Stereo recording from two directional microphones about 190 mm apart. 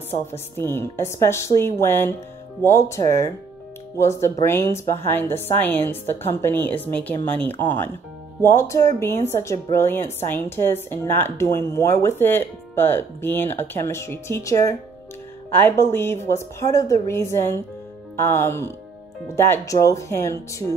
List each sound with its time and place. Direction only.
0.1 s a woman's voice: 10° left (ahead or behind)